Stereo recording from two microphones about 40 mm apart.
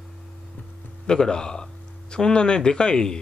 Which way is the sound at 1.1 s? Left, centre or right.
Centre.